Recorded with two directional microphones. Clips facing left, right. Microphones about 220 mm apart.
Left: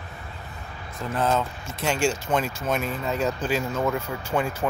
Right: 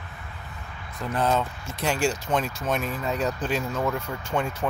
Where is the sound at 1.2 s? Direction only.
Centre (ahead or behind).